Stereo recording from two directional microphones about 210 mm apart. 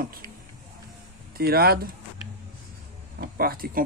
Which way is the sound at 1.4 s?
45° right (ahead or behind).